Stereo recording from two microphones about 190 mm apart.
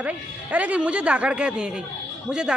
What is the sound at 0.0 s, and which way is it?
Speech, 10° right (ahead or behind).